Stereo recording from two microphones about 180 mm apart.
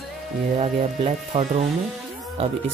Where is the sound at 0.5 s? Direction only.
35° right (ahead or behind).